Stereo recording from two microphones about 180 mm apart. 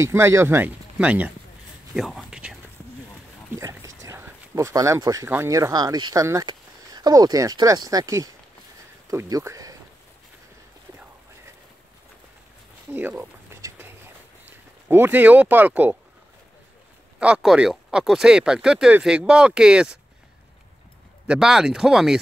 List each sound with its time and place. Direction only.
0.0 s speech: 15° right (ahead or behind)
3.5 s speech: 15° right (ahead or behind)
12.9 s a sound: 10° right (ahead or behind)
14.9 s speech: 10° right (ahead or behind)
17.2 s speech: 5° right (ahead or behind)
21.3 s speech: 5° right (ahead or behind)